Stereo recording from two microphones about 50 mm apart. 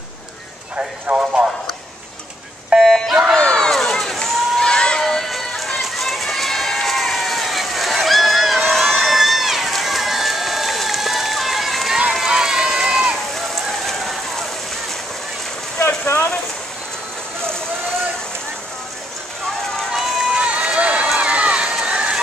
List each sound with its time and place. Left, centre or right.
0.7 s speech: right
2.7 s a sound: right
3.3 s crowd: centre
5.0 s run: centre
13.3 s rain on surface: centre
19.9 s run: centre
20.3 s run: right